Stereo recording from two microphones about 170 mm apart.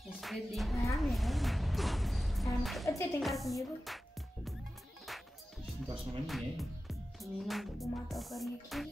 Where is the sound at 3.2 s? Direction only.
Centre (ahead or behind).